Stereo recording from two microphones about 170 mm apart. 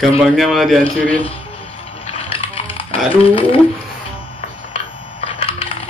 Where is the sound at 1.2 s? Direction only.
35° left (ahead or behind).